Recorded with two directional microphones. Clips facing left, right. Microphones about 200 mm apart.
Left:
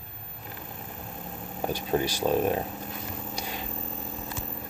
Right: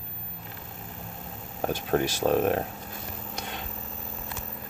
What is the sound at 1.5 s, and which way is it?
Speech, 5° left (ahead or behind).